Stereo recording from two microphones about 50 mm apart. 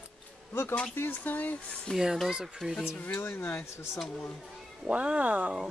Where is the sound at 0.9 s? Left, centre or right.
Left.